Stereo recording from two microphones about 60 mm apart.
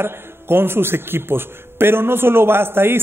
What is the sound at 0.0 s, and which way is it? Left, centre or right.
A man's voice, right.